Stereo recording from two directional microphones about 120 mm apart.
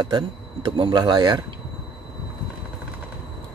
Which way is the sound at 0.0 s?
40° right (ahead or behind).